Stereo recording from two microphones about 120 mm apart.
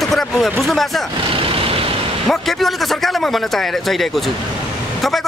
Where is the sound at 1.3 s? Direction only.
50° right (ahead or behind).